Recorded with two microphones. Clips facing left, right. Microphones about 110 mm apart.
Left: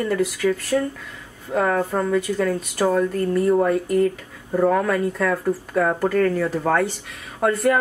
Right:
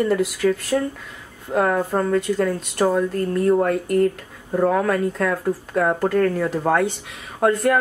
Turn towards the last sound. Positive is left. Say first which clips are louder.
# right 1 dB
turn(degrees=0)  # may be behind; listen again after turning